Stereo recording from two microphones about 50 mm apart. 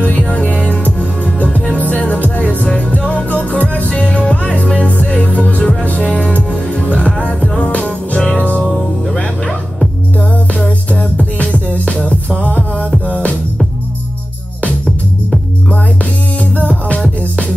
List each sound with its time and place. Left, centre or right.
0.3 s music: left
5.6 s music: centre
6.7 s music: left
8.2 s music: centre
10.9 s music: left
16.5 s music: left